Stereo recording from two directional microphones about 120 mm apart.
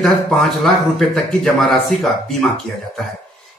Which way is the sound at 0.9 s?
5° left (ahead or behind).